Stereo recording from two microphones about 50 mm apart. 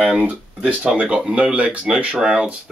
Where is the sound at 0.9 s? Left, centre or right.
Right.